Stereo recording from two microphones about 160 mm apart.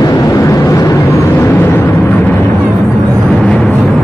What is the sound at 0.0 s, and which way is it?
Vehicle, 25° left (ahead or behind).